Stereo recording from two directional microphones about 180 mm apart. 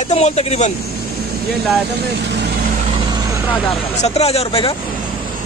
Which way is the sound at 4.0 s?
35° left (ahead or behind).